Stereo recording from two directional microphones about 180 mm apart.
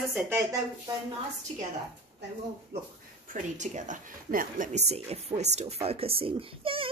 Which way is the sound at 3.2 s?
45° right (ahead or behind).